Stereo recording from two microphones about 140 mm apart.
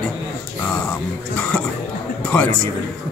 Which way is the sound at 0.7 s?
10° left (ahead or behind).